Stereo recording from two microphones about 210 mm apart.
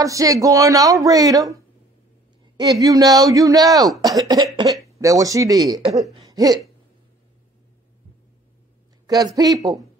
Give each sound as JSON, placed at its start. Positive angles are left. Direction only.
{"t": 0.0, "sound": "speech", "side_deg": -15}
{"t": 9.0, "sound": "speech", "side_deg": -20}